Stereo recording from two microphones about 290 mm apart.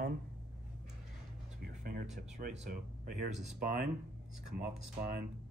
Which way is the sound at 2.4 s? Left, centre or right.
Right.